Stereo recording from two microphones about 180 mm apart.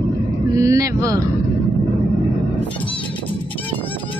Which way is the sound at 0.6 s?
20° right (ahead or behind).